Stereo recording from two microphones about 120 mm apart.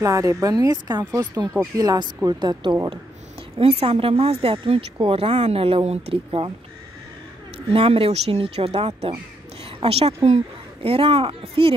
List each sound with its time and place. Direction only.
0.0 s speech: 25° right (ahead or behind)
3.8 s speech: 55° right (ahead or behind)
7.5 s speech: 50° right (ahead or behind)